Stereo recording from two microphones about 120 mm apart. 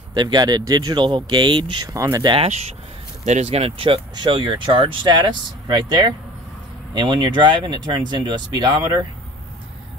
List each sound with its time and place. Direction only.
0.1 s speech: 35° right (ahead or behind)
2.0 s speech: 30° right (ahead or behind)
3.3 s speech: 65° right (ahead or behind); by 9.0 s 35° right (ahead or behind)